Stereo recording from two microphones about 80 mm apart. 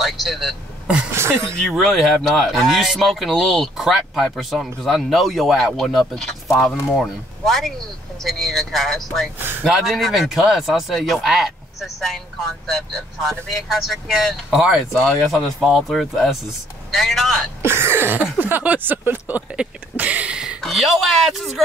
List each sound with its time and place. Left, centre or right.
0.0 s speech: centre
1.1 s speech: right
1.7 s speech: centre
17.6 s cough: right
18.4 s speech: right
20.6 s speech: centre